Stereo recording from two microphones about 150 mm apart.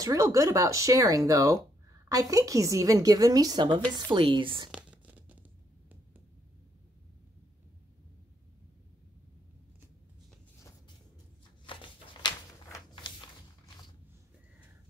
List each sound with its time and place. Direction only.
0.0 s speech: 20° right (ahead or behind)
4.6 s crumpling: 5° right (ahead or behind)
11.6 s a sound: 35° left (ahead or behind)